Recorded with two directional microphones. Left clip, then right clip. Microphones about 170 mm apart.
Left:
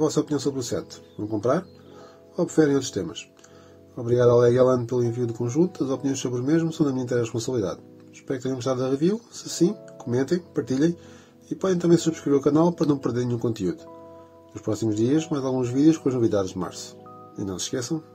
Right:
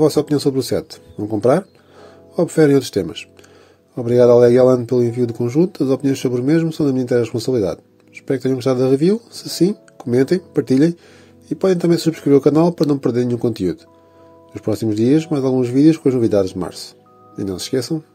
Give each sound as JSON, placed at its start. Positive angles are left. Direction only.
{"t": 0.0, "sound": "speech", "side_deg": -40}
{"t": 2.3, "sound": "speech", "side_deg": -40}